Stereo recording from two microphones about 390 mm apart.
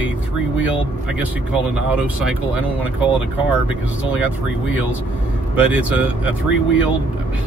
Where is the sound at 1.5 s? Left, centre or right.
Centre.